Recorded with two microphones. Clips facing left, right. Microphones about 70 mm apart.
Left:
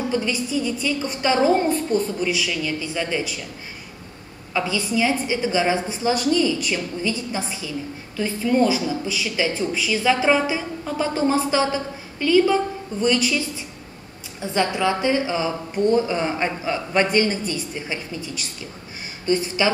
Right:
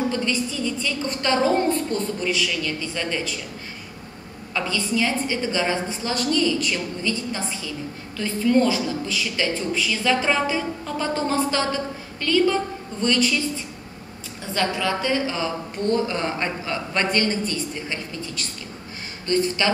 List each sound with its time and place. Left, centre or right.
0.1 s a woman's voice: centre
4.6 s a woman's voice: centre
14.5 s a woman's voice: centre